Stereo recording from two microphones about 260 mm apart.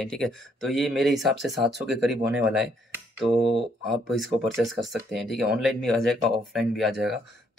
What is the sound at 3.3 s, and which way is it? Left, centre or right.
Speech, right.